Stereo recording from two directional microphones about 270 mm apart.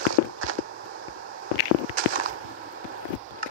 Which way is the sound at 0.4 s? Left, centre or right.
Right.